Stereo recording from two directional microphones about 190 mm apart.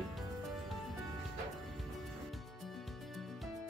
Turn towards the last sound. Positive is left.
turn(degrees=0)  # may be behind; listen again after turning